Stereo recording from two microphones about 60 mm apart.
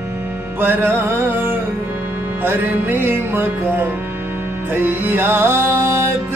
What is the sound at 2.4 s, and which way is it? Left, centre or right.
Music, right.